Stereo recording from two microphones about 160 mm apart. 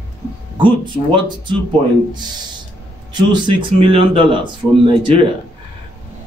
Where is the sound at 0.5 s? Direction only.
30° right (ahead or behind).